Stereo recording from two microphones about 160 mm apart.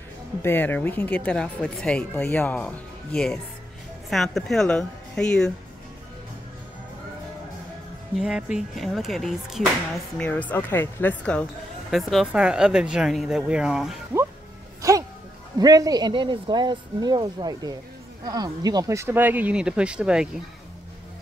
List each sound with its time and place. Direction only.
0.4 s speech: 15° left (ahead or behind)
4.1 s speech: centre (ahead or behind)
8.2 s speech: 5° right (ahead or behind)
14.8 s music: 20° right (ahead or behind)
15.6 s speech: 25° right (ahead or behind); by 20.2 s 5° right (ahead or behind)